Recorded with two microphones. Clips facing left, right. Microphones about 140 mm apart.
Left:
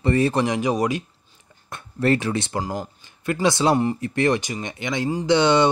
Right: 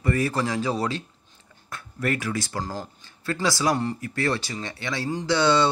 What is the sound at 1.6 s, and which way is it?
Speech, 25° left (ahead or behind).